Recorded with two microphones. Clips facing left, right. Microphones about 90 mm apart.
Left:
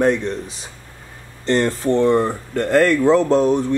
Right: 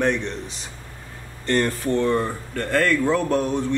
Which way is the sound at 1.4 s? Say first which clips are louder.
Left 4 dB; 25° left (ahead or behind).